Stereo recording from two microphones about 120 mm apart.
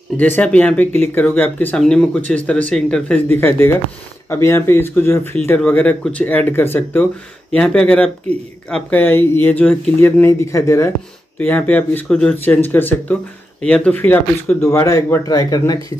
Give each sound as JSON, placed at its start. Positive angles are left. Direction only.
{"t": 0.2, "sound": "speech", "side_deg": 10}
{"t": 3.3, "sound": "a man's voice", "side_deg": 20}
{"t": 11.3, "sound": "speech", "side_deg": 10}
{"t": 12.4, "sound": "a man's voice", "side_deg": 15}